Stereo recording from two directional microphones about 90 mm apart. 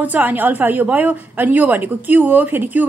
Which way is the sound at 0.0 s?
20° right (ahead or behind).